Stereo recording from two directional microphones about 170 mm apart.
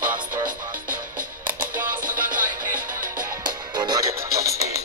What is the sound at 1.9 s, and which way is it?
Music, 55° right (ahead or behind).